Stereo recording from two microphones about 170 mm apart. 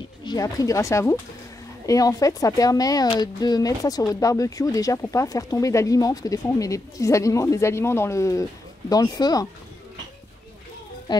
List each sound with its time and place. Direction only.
0.2 s speech: 25° left (ahead or behind)
11.1 s a child's voice: 25° left (ahead or behind)